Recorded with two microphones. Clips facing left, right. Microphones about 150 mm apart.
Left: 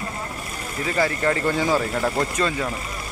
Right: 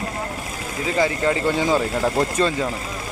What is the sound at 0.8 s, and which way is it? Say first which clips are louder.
Speech: right 2 dB; 15° right (ahead or behind).